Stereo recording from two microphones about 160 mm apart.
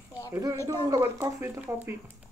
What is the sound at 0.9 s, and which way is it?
Speech, 20° right (ahead or behind).